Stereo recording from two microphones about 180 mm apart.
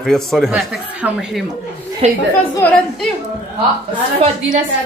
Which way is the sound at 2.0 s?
35° right (ahead or behind).